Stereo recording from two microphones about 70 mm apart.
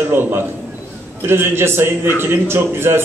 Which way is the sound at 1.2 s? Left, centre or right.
Right.